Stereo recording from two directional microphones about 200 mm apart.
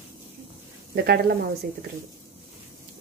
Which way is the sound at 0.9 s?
50° right (ahead or behind).